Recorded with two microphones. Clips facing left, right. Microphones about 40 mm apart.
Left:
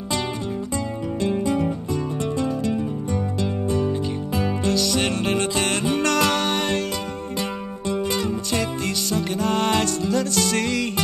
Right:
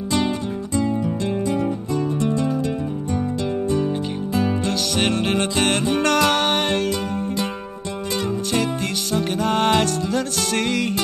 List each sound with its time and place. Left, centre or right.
3.7 s music: right
8.2 s music: right